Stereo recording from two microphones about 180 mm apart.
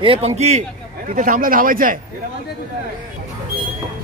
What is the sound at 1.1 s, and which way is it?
Speech, 50° right (ahead or behind).